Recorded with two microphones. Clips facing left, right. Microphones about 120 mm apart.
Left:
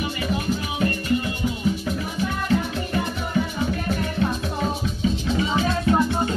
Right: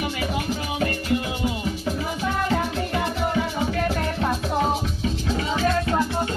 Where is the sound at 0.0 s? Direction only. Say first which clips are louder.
Left 1 dB; 90° right.